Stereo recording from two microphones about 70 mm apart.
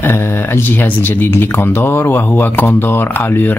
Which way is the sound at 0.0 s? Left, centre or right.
Left.